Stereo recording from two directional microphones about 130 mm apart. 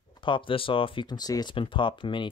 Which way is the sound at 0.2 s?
40° left (ahead or behind).